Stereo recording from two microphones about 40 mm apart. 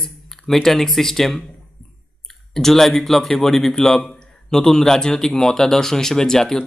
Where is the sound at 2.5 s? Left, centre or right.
Centre.